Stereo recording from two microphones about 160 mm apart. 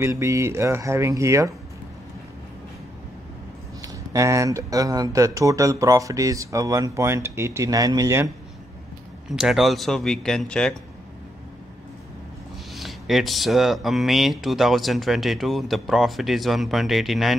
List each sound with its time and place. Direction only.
0.0 s speech: 20° right (ahead or behind)
3.8 s speech: 20° right (ahead or behind)
9.3 s speech: centre (ahead or behind)
12.7 s speech: centre (ahead or behind)